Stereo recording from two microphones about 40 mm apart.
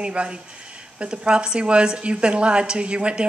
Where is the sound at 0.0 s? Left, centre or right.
Right.